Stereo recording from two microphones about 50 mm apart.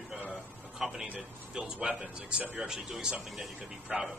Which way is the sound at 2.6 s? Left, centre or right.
Centre.